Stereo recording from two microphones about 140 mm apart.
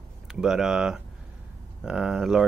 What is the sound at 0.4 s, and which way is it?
Speech, 5° right (ahead or behind).